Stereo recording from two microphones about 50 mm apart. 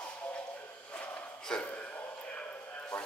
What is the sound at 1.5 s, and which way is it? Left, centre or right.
Speech, centre.